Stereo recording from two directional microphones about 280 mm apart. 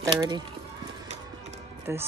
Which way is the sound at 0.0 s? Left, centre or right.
Centre.